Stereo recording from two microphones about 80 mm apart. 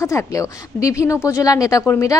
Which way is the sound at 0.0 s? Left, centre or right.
Left.